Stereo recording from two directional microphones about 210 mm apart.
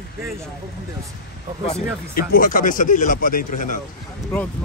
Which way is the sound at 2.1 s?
45° left (ahead or behind).